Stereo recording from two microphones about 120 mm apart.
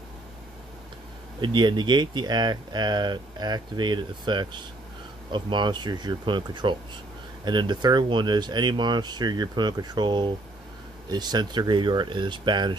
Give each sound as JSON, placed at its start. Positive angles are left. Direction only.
{"t": 1.4, "sound": "speech", "side_deg": -40}